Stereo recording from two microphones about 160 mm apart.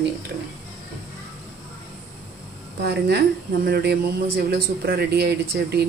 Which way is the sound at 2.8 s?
90° right.